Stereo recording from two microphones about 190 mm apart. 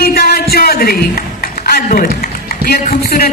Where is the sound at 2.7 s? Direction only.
50° left (ahead or behind).